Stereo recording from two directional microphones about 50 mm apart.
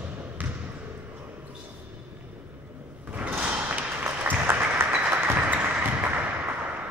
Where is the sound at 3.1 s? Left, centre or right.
Right.